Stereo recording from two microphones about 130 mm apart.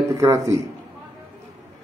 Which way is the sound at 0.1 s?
25° right (ahead or behind).